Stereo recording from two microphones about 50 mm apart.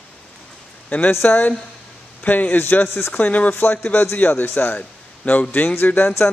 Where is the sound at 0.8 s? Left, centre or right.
Left.